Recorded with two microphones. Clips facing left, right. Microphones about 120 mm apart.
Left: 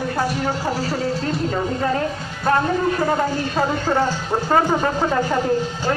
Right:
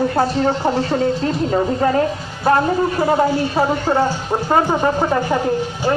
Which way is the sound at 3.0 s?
15° right (ahead or behind).